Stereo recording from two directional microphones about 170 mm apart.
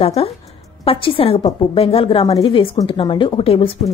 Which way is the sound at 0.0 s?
35° left (ahead or behind).